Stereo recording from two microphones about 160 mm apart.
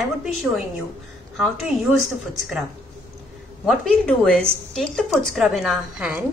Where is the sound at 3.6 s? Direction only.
5° left (ahead or behind).